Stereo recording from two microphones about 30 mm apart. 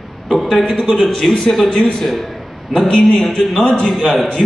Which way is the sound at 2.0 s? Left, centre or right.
Centre.